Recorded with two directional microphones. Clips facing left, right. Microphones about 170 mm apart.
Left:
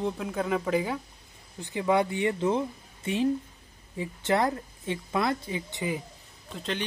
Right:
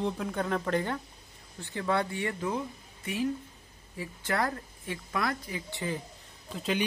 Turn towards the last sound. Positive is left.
turn(degrees=-5)  # may be behind; listen again after turning